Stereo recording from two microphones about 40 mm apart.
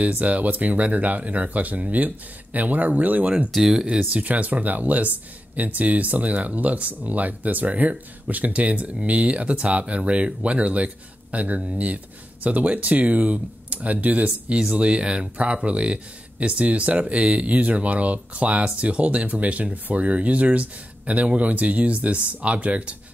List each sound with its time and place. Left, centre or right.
0.0 s speech: right